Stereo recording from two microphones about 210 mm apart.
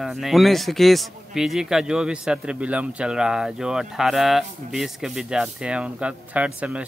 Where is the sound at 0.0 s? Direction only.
Centre (ahead or behind).